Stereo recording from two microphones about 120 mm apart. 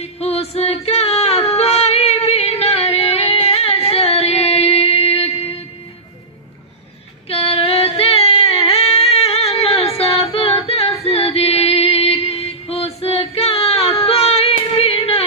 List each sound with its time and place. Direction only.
0.0 s female singing: 60° left (ahead or behind)
7.2 s music: 55° left (ahead or behind)